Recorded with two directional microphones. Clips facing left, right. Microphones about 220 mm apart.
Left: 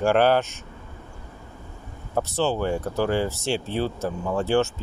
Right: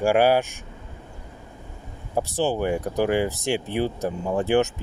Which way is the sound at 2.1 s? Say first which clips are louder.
Even; 15° right (ahead or behind).